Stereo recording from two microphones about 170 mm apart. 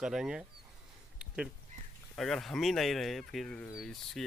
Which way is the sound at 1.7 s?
50° right (ahead or behind).